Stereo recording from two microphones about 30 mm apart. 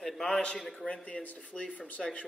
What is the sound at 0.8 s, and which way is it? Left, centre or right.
Speech, left.